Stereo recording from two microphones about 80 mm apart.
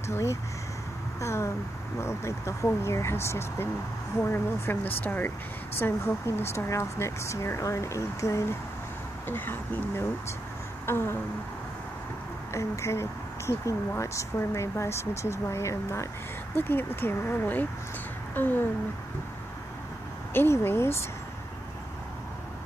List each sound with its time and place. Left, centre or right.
0.1 s speech: left
9.3 s speech: left
12.5 s speech: left
16.5 s speech: left
20.3 s speech: left